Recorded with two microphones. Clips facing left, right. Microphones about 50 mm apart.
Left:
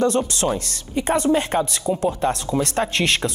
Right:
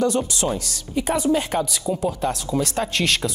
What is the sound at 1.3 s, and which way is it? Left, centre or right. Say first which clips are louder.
Speech: left 2 dB; left.